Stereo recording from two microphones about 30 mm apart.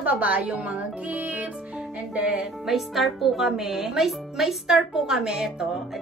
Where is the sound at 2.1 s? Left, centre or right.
Right.